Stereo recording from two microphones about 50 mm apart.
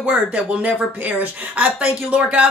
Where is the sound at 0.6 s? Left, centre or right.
Right.